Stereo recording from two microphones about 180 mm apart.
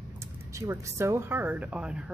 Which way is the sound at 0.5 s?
15° right (ahead or behind).